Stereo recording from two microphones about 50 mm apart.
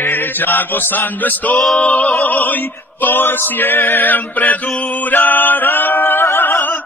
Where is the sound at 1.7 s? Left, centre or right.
Left.